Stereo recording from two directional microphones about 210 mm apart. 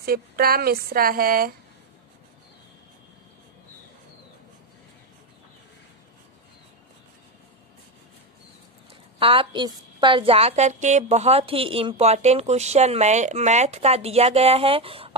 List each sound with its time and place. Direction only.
0.0 s speech: 45° right (ahead or behind)
9.2 s a woman's voice: 25° right (ahead or behind)